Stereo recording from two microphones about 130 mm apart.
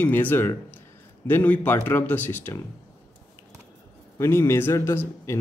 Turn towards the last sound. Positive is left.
turn(degrees=20)  # may be behind; listen again after turning